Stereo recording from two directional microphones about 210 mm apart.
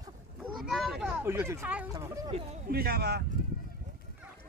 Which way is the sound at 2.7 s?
45° right (ahead or behind).